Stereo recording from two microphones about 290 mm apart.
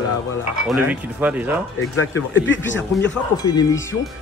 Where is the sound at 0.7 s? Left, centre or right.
Centre.